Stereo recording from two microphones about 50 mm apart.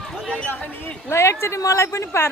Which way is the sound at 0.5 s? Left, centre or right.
Left.